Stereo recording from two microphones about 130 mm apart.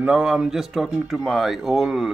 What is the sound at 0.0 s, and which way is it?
Speech, 10° right (ahead or behind).